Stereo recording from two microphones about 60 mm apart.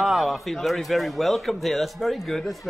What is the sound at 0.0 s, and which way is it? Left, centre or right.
A man's voice, centre.